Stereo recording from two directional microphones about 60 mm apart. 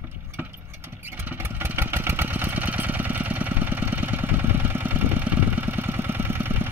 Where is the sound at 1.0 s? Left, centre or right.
Right.